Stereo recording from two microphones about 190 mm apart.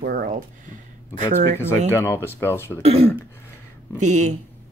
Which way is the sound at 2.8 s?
30° right (ahead or behind).